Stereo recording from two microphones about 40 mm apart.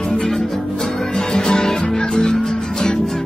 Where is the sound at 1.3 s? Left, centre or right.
Centre.